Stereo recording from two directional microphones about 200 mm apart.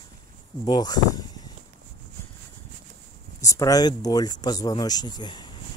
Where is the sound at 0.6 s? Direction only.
20° left (ahead or behind).